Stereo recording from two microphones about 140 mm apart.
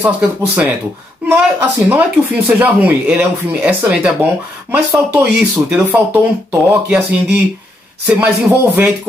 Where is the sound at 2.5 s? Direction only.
10° right (ahead or behind).